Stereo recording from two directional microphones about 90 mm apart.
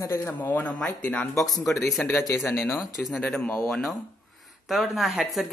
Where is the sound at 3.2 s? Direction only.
10° left (ahead or behind).